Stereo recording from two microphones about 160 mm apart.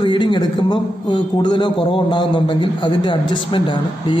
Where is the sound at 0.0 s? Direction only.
30° left (ahead or behind).